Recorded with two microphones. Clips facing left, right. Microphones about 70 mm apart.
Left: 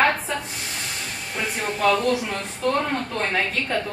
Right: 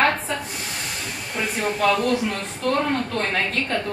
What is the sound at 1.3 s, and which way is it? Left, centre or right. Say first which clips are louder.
Speech: right 2 dB; centre.